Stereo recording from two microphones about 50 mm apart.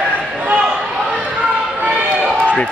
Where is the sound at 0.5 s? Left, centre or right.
Centre.